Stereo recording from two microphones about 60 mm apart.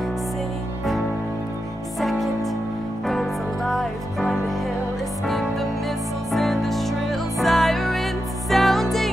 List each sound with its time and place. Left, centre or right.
2.0 s music: centre